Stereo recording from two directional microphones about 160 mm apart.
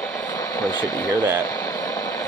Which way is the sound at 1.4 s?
20° left (ahead or behind).